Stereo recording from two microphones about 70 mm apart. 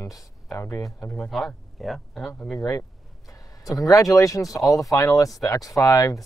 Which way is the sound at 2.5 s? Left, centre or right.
Left.